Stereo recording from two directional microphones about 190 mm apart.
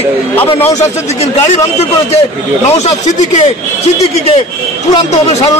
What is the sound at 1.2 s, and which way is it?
Speech, 35° left (ahead or behind).